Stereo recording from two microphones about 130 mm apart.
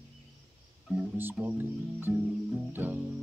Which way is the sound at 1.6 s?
15° right (ahead or behind).